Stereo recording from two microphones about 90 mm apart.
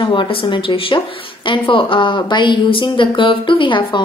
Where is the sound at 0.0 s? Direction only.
65° left (ahead or behind).